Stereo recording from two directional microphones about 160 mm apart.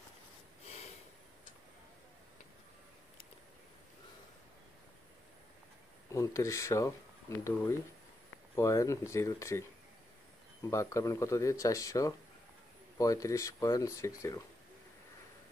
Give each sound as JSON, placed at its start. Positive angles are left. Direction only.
{"t": 6.0, "sound": "speech", "side_deg": 20}